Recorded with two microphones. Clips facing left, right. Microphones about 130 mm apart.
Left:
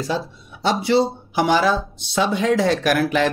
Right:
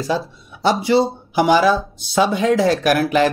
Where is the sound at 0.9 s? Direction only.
5° right (ahead or behind).